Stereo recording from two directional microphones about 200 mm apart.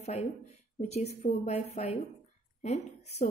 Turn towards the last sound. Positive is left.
turn(degrees=35)  # may be behind; listen again after turning